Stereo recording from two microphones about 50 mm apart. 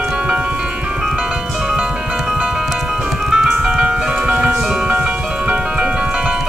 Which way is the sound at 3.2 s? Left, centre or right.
Centre.